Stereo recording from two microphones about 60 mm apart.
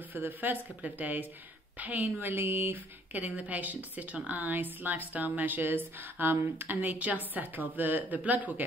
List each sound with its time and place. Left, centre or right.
0.1 s a woman's voice: right